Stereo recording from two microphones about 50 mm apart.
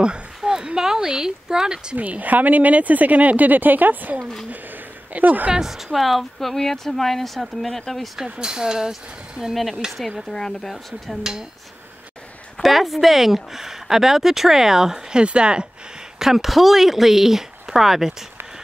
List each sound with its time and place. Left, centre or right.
0.0 s a sound: centre
2.0 s speech: right
4.2 s speech: centre
5.1 s speech: right
5.5 s speech: centre
8.2 s speech: centre
9.4 s speech: centre
10.3 s speech: centre
12.6 s speech: centre
16.2 s speech: centre